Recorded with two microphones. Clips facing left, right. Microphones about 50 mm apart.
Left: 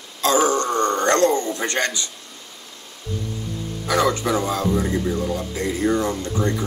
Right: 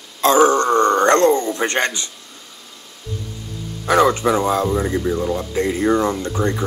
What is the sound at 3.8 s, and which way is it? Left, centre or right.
Speech, right.